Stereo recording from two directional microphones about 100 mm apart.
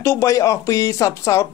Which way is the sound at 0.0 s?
30° left (ahead or behind).